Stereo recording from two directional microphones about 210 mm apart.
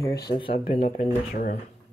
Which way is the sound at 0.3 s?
30° left (ahead or behind).